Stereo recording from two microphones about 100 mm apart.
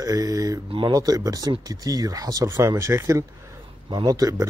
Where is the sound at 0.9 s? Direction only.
40° right (ahead or behind).